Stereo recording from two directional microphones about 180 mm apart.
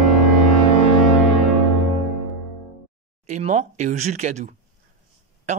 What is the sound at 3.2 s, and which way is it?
Speech, 40° right (ahead or behind).